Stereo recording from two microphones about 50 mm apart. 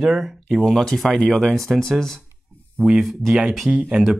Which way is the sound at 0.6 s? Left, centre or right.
Centre.